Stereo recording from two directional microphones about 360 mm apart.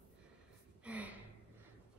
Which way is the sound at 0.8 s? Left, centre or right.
Centre.